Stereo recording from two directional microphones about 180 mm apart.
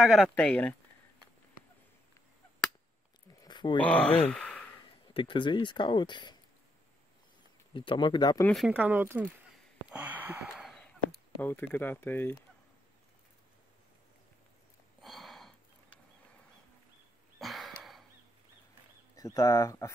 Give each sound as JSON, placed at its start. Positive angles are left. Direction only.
{"t": 0.0, "sound": "speech", "side_deg": 0}
{"t": 3.4, "sound": "a sound", "side_deg": 25}
{"t": 3.8, "sound": "speech", "side_deg": 5}
{"t": 5.0, "sound": "speech", "side_deg": 30}
{"t": 7.7, "sound": "speech", "side_deg": 25}
{"t": 8.5, "sound": "speech", "side_deg": 0}
{"t": 8.7, "sound": "speech", "side_deg": -10}
{"t": 9.8, "sound": "a sound", "side_deg": -10}
{"t": 11.3, "sound": "speech", "side_deg": 10}
{"t": 15.0, "sound": "sniff", "side_deg": 0}
{"t": 17.4, "sound": "a sound", "side_deg": 0}
{"t": 19.1, "sound": "speech", "side_deg": 20}